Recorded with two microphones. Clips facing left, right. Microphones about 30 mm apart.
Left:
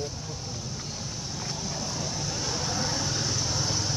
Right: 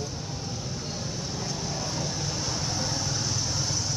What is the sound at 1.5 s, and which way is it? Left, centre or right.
Vehicle, centre.